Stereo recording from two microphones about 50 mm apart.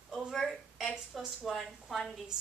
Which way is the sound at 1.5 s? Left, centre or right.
Centre.